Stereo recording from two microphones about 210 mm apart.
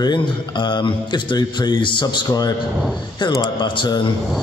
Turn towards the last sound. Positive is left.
turn(degrees=20)  # may be behind; listen again after turning